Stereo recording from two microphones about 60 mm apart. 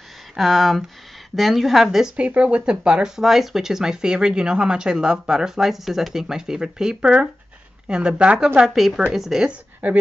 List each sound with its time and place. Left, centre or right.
0.4 s a woman's voice: centre
2.1 s speech: right
8.7 s a woman's voice: centre
9.5 s speech: right